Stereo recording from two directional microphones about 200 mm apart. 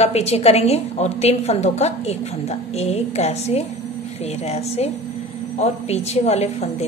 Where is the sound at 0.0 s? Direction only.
30° left (ahead or behind).